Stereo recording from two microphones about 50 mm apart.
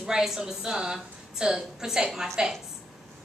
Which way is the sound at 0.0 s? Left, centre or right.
Centre.